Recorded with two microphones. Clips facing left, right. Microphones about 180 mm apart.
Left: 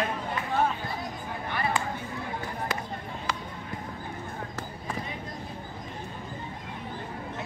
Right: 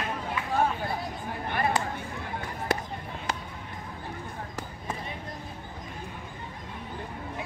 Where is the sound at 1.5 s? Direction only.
50° right (ahead or behind).